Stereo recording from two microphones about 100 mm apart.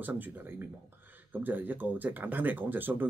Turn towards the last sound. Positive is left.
turn(degrees=-20)  # may be behind; listen again after turning